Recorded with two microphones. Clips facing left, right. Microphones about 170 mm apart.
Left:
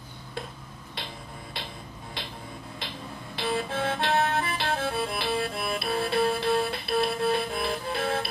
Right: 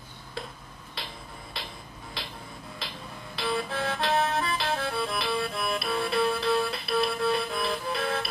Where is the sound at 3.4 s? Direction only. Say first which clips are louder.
Left 1 dB; 25° left (ahead or behind).